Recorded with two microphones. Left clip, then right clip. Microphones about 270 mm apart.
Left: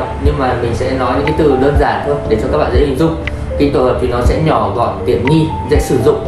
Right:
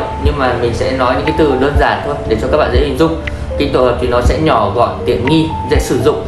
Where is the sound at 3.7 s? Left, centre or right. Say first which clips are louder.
Right 4 dB; centre.